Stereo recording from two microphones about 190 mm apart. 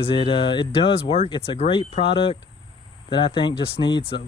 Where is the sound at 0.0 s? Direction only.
25° left (ahead or behind).